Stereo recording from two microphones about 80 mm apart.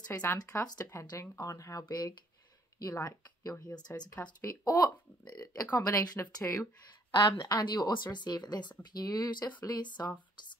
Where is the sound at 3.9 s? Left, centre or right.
Left.